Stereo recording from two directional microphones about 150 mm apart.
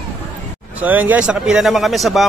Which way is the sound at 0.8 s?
10° right (ahead or behind).